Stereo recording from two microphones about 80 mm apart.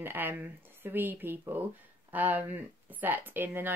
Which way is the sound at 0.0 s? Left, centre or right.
Right.